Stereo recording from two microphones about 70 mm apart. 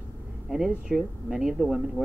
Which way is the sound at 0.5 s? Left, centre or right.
Centre.